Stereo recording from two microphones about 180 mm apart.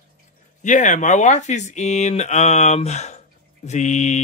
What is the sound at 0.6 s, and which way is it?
Speech, 40° left (ahead or behind).